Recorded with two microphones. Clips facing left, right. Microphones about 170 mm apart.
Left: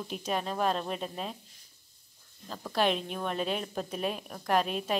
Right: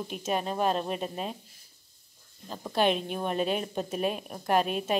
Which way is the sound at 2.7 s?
Centre (ahead or behind).